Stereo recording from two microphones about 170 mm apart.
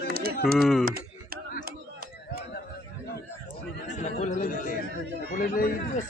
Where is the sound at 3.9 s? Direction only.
45° left (ahead or behind).